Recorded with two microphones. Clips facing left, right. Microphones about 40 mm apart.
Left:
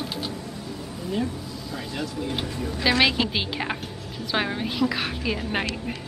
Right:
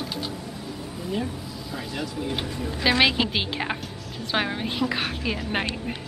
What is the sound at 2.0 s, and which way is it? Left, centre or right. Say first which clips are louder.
A woman's voice: even; centre.